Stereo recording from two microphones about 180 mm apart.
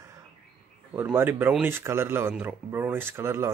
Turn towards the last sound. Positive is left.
turn(degrees=-15)  # may be behind; listen again after turning